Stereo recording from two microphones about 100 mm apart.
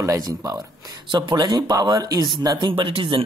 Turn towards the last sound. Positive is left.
turn(degrees=-55)  # may be behind; listen again after turning